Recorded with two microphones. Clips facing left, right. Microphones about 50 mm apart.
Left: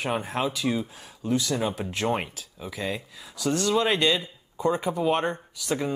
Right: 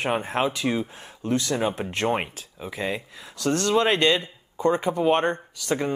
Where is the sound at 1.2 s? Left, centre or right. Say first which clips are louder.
Right 1 dB; right.